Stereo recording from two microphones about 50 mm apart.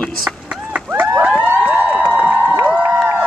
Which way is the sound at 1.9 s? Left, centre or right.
Right.